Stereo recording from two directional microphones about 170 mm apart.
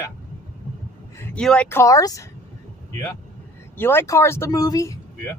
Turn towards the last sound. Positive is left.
turn(degrees=20)  # may be behind; listen again after turning